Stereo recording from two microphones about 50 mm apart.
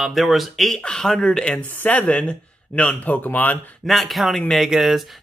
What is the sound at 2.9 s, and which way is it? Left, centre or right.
Speech, left.